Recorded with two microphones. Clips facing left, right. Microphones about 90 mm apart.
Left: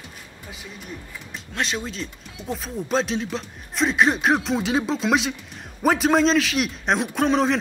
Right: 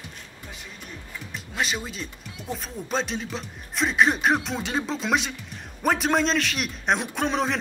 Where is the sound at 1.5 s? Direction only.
5° right (ahead or behind).